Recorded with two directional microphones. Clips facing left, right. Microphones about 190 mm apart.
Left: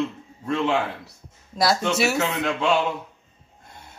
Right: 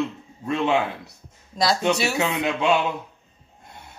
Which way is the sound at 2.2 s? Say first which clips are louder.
Right 1 dB; 15° right (ahead or behind).